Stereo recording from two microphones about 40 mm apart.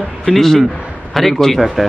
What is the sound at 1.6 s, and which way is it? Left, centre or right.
Speech, centre.